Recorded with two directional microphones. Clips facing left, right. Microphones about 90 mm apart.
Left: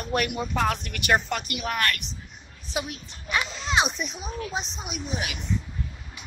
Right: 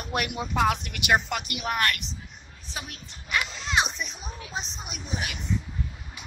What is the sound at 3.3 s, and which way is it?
Speech, 25° left (ahead or behind).